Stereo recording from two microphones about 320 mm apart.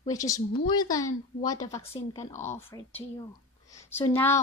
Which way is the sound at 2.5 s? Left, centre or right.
Centre.